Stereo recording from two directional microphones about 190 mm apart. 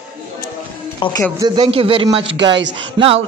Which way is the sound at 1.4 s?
25° right (ahead or behind).